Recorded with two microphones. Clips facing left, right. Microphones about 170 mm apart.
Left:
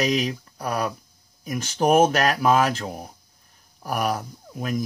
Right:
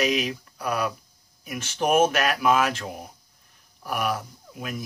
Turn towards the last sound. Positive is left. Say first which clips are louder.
# left 5 dB
turn(degrees=40)  # may be behind; listen again after turning